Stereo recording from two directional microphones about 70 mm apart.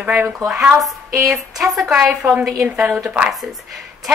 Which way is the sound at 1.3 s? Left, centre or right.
Centre.